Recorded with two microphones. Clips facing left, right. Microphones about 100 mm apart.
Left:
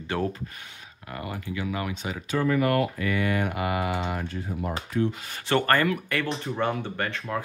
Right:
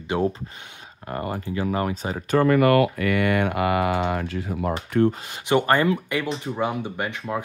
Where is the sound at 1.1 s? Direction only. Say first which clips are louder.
Right 6 dB; 40° right (ahead or behind).